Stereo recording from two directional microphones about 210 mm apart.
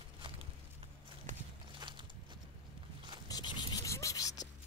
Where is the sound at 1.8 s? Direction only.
20° right (ahead or behind).